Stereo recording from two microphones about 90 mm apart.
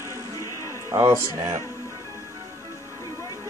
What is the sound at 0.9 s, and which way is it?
Speech, 30° right (ahead or behind).